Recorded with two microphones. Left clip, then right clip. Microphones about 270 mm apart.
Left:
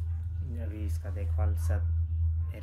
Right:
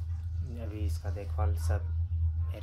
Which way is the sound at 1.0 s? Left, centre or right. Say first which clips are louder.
Right 3 dB; centre.